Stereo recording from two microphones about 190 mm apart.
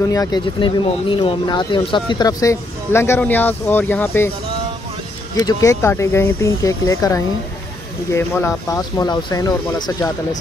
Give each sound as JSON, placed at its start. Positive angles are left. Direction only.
{"t": 0.1, "sound": "speech", "side_deg": 20}
{"t": 5.5, "sound": "speech", "side_deg": 15}